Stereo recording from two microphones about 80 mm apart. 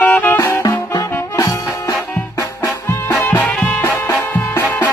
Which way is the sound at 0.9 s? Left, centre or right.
Left.